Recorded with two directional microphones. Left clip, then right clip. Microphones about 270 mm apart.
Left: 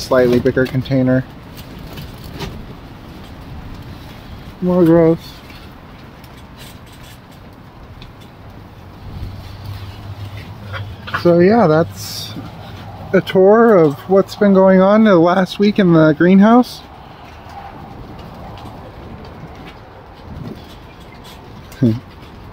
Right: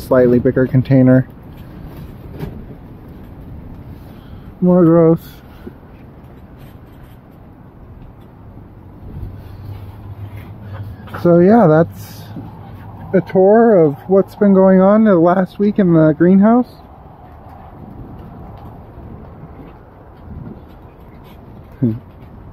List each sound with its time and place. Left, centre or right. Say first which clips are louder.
0.1 s speech: right 1 dB; centre
4.6 s speech: right 1 dB; right
11.2 s speech: right 1 dB; centre
13.1 s speech: even; centre